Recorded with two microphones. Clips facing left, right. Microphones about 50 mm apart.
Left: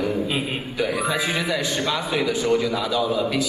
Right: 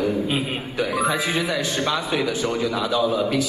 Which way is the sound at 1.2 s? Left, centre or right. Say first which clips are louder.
Right 1 dB; left.